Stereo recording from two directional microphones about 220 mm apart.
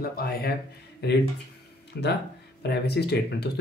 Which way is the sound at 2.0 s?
45° left (ahead or behind).